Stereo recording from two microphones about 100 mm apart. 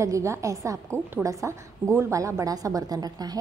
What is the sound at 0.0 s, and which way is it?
A woman's voice, 30° right (ahead or behind).